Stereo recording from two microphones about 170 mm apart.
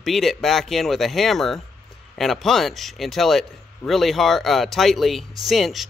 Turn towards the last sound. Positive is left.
turn(degrees=0)  # may be behind; listen again after turning